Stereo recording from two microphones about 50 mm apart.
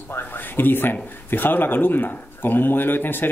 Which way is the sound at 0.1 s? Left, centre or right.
Left.